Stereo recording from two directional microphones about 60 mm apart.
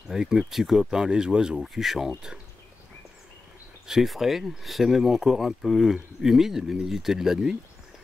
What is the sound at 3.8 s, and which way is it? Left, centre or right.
Speech, centre.